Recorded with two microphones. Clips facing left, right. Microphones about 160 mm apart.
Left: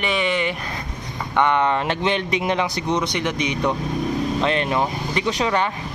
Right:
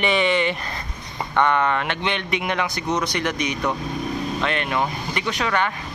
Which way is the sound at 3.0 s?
25° left (ahead or behind).